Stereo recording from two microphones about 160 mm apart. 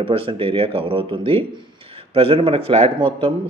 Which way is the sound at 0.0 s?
35° right (ahead or behind).